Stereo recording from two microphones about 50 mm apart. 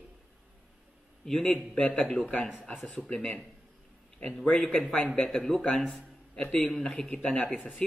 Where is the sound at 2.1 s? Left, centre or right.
Left.